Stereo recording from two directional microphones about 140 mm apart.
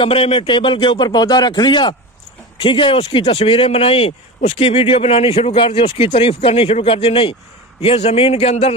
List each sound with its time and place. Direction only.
0.0 s a man's voice: 45° left (ahead or behind)